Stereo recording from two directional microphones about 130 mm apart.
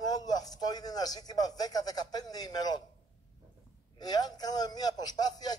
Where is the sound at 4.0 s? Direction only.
30° left (ahead or behind).